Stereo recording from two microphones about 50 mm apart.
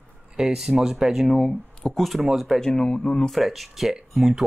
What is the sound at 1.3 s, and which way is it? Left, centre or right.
Speech, centre.